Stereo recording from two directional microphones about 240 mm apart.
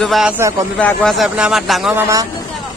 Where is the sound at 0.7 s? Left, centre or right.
Centre.